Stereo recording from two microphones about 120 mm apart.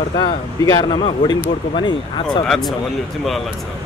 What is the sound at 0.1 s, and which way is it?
Speech, 35° left (ahead or behind).